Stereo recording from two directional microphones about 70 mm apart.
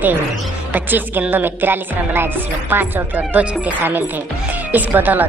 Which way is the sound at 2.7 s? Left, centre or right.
Right.